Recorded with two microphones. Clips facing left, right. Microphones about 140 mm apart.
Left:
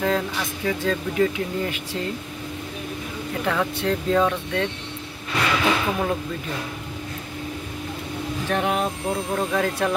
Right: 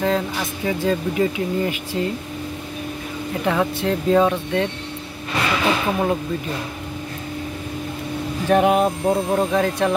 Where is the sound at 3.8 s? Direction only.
15° right (ahead or behind).